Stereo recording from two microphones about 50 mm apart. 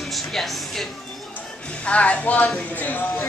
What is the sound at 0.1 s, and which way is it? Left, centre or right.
Speech, centre.